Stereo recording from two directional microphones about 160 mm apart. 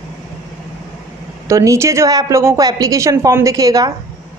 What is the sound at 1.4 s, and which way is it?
A woman's voice, 20° right (ahead or behind).